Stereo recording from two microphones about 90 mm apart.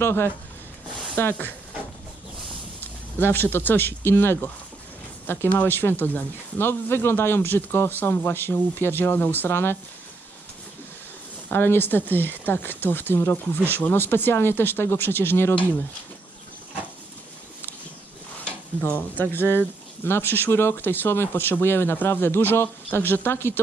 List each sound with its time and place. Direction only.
0.0 s speech: 25° left (ahead or behind)
3.2 s speech: 25° left (ahead or behind)
11.5 s speech: 25° left (ahead or behind)
18.4 s speech: 20° left (ahead or behind)